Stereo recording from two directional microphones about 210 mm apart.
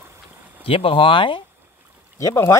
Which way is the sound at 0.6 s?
25° left (ahead or behind).